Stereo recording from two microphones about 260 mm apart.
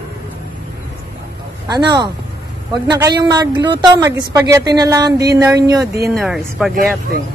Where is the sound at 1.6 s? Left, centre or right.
Centre.